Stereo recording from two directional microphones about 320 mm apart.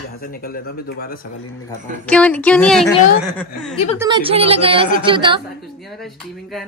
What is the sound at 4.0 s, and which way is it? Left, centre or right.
A woman's voice, centre.